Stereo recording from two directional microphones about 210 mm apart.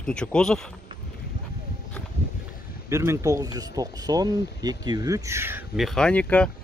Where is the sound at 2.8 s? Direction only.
15° right (ahead or behind).